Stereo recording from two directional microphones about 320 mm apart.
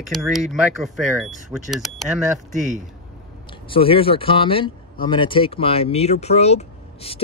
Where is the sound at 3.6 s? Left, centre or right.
Centre.